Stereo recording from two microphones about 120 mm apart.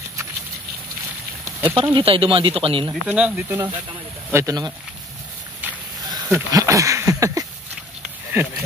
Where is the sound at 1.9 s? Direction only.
50° right (ahead or behind).